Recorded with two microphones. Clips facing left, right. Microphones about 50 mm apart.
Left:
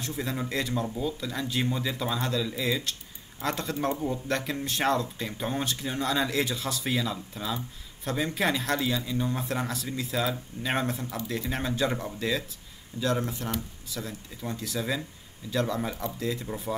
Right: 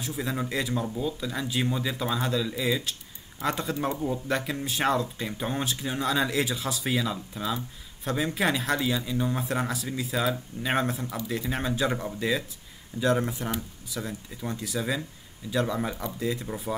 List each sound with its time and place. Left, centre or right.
0.0 s speech: centre
13.0 s speech: centre
13.5 s speech: centre